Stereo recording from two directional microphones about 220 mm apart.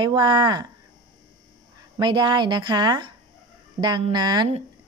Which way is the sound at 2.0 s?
20° right (ahead or behind).